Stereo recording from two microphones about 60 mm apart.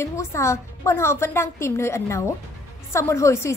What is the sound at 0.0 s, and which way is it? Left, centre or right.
A woman's voice, left.